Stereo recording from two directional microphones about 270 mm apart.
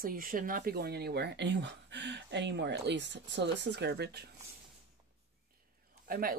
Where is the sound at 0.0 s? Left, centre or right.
Right.